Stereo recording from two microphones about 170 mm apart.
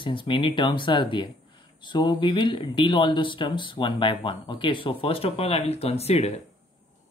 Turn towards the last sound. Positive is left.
turn(degrees=40)  # may be behind; listen again after turning